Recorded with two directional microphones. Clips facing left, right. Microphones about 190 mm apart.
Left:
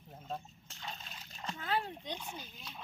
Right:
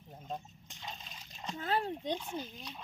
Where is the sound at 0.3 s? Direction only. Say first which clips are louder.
Even; centre (ahead or behind).